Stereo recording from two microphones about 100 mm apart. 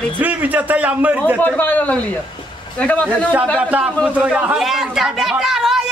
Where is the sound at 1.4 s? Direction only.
15° left (ahead or behind).